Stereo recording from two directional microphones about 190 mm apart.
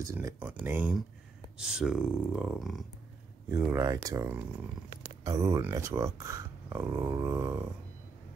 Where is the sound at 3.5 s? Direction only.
15° right (ahead or behind).